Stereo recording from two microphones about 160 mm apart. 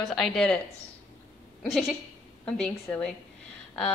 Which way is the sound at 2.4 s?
5° left (ahead or behind).